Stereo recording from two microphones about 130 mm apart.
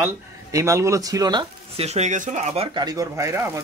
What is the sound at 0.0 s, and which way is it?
Speech, 25° right (ahead or behind).